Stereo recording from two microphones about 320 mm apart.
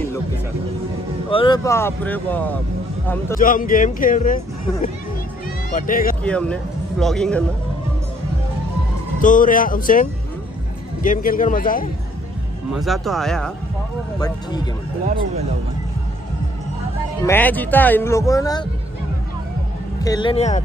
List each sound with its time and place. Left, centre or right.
1.3 s speech: centre
3.3 s speech: left
5.7 s speech: left
6.2 s speech: centre
9.2 s speech: left
12.7 s speech: centre
14.2 s speech: centre
17.3 s speech: centre
20.0 s speech: centre